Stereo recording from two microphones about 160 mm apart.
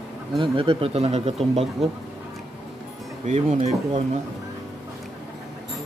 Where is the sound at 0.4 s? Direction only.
35° right (ahead or behind).